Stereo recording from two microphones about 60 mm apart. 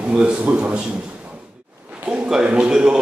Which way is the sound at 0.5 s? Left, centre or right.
Right.